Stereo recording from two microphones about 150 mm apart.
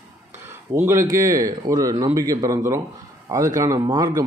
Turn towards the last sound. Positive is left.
turn(degrees=-25)  # may be behind; listen again after turning